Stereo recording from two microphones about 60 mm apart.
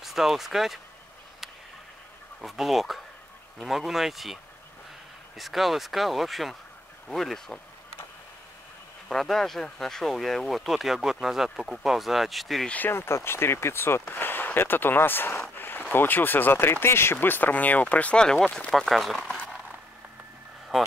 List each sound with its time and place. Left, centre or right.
0.0 s speech: centre
2.4 s speech: centre
5.4 s speech: centre
9.1 s speech: centre
12.6 s speech: left
12.9 s speech: left
14.0 s speech: left
15.5 s a sound: left
15.9 s speech: left
18.2 s speech: centre
20.7 s speech: centre